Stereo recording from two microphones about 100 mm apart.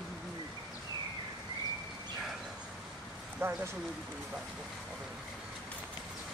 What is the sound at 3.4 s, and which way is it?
Speech, 25° right (ahead or behind).